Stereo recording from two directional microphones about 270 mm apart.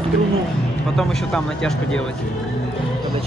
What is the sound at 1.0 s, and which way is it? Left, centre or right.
Speech, centre.